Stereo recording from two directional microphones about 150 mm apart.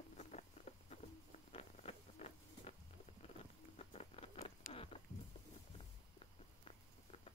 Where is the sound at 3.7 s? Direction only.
45° left (ahead or behind).